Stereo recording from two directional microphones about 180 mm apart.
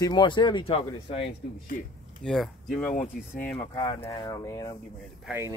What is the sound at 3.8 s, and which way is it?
Speech, 25° left (ahead or behind).